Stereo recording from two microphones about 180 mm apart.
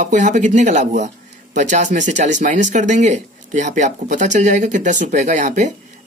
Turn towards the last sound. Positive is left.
turn(degrees=-40)  # may be behind; listen again after turning